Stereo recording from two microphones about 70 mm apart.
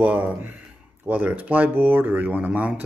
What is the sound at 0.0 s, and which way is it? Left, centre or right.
Speech, right.